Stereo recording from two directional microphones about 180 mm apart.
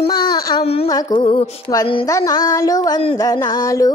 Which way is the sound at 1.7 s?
25° left (ahead or behind).